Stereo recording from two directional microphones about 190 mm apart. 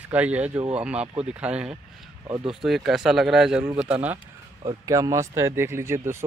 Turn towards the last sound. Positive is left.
turn(degrees=-15)  # may be behind; listen again after turning